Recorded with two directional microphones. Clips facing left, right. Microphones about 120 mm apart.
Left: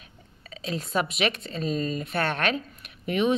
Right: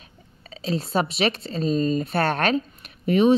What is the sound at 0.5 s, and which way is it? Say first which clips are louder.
A woman's voice: right 5 dB; 35° right (ahead or behind).